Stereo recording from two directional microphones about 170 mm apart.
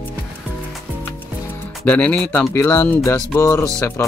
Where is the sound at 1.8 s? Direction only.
10° left (ahead or behind).